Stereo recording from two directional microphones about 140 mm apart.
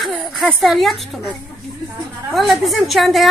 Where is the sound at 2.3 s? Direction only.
Centre (ahead or behind).